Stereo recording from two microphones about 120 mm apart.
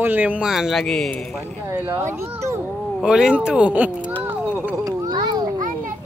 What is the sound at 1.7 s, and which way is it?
Speech, 20° right (ahead or behind).